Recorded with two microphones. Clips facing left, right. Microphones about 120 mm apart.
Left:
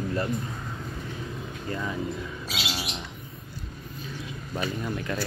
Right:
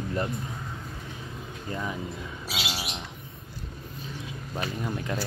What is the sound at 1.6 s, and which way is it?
Speech, 15° right (ahead or behind).